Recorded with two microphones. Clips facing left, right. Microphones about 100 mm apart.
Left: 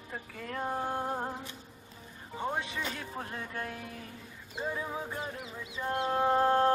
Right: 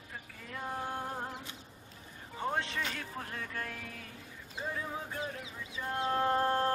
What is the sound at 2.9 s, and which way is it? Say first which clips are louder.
Music: left 2 dB; 25° left (ahead or behind).